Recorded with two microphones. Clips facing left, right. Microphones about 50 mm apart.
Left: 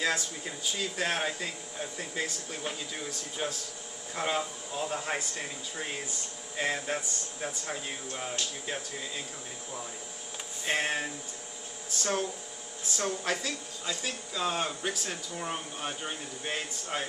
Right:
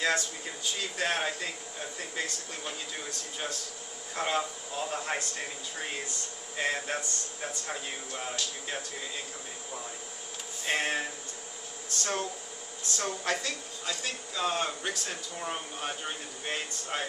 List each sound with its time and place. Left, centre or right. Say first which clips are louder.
0.0 s speech: right 1 dB; centre
10.6 s speech: even; centre